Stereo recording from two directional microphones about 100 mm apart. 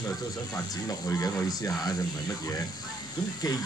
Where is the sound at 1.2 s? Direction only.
40° left (ahead or behind).